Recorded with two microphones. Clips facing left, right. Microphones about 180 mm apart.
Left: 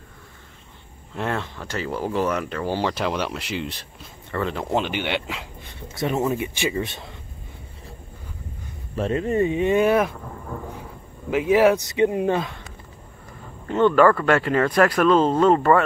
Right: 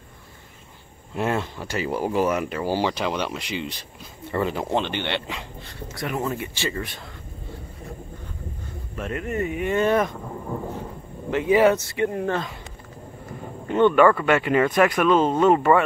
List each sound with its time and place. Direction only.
1.1 s speech: 10° right (ahead or behind)
4.3 s speech: 10° right (ahead or behind)
4.7 s speech: 10° left (ahead or behind)
5.9 s speech: 25° left (ahead or behind)
8.9 s speech: 30° left (ahead or behind)
9.8 s speech: 10° left (ahead or behind)
10.4 s thunder: 15° right (ahead or behind)
10.8 s a sound: 5° left (ahead or behind)
11.7 s speech: 20° left (ahead or behind)
13.7 s speech: 15° right (ahead or behind)
13.9 s speech: 5° right (ahead or behind)